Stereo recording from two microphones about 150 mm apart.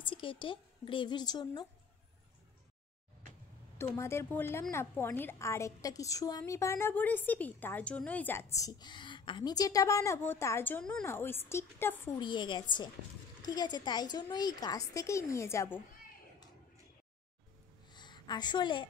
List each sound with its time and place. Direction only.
0.0 s a woman's voice: 35° left (ahead or behind)
3.7 s a woman's voice: 20° left (ahead or behind)
12.2 s a woman's voice: 30° left (ahead or behind)
17.8 s a sound: 30° left (ahead or behind)